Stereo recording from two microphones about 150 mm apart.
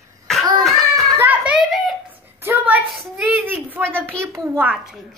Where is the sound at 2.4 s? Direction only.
15° right (ahead or behind).